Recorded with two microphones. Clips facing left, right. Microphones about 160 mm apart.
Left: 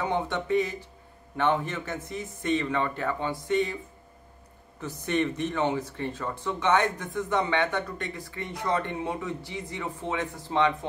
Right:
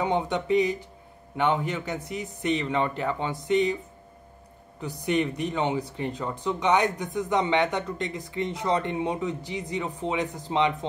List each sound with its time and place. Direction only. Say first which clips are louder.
0.0 s speech: right 3 dB; 15° right (ahead or behind)
4.7 s speech: right 2 dB; 15° right (ahead or behind)